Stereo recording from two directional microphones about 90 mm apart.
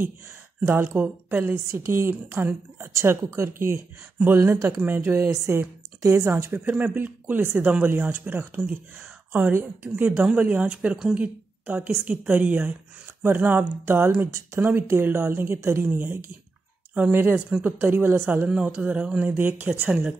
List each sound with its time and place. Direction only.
0.6 s a woman's voice: 20° right (ahead or behind)
6.7 s a woman's voice: 15° right (ahead or behind)